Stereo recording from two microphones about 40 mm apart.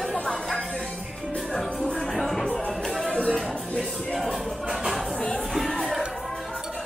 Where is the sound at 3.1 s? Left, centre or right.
Left.